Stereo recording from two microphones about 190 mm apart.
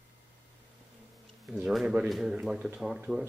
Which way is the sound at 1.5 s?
5° right (ahead or behind).